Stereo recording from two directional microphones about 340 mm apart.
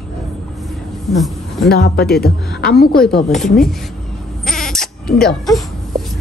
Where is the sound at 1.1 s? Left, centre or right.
Centre.